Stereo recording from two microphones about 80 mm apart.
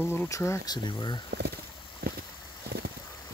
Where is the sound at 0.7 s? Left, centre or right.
Left.